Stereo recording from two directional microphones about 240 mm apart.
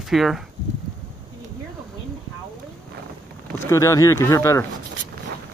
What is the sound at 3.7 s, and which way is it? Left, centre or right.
Speech, centre.